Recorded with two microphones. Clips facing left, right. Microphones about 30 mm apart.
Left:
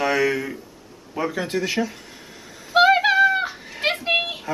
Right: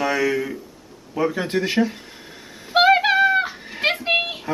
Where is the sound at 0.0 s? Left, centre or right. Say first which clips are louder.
Even; centre.